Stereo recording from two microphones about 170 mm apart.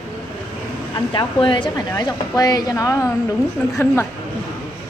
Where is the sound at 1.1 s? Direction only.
30° left (ahead or behind).